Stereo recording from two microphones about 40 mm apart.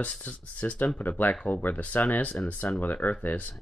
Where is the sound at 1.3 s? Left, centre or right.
Left.